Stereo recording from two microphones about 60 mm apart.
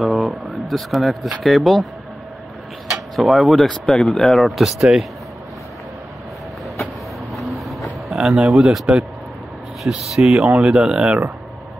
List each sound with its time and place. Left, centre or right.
0.0 s speech: centre
2.9 s speech: centre
7.3 s vehicle: centre
9.8 s speech: centre
10.5 s speech: centre